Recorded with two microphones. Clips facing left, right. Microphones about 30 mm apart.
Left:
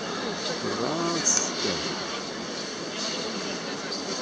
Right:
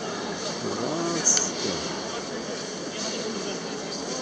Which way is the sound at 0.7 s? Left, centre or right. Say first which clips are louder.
Even; left.